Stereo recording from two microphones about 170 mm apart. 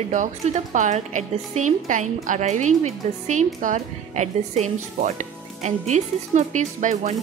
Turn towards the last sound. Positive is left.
turn(degrees=-45)  # may be behind; listen again after turning